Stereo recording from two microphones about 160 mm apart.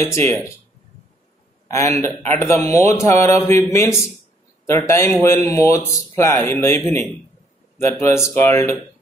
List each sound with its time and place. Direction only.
0.0 s speech: 15° left (ahead or behind)
1.7 s speech: 20° left (ahead or behind)